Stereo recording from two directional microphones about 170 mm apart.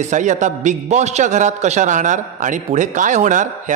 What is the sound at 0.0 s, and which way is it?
A man's voice, 45° right (ahead or behind).